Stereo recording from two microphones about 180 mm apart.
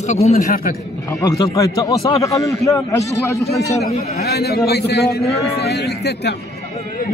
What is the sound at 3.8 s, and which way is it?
A man's voice, 60° left (ahead or behind).